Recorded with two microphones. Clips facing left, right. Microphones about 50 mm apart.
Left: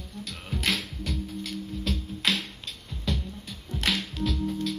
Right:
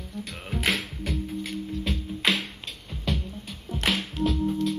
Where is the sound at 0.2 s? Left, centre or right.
Centre.